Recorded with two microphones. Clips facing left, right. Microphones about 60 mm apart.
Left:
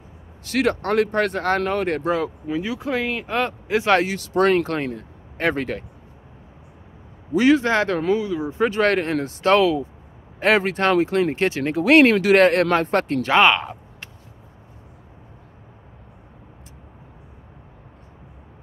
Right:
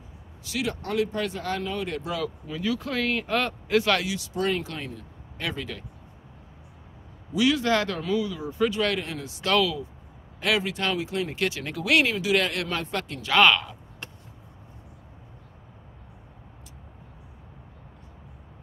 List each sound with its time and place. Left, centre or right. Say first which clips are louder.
0.4 s speech: left 9 dB; left
2.1 s speech: left 7 dB; left
3.8 s speech: left 7 dB; left
7.3 s speech: left 6 dB; left
9.5 s speech: left 7 dB; left
10.4 s speech: left 8 dB; left
12.1 s speech: left 10 dB; left
13.3 s speech: left 3 dB; left